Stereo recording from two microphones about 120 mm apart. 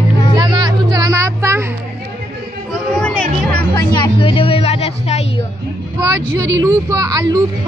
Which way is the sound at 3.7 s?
40° left (ahead or behind).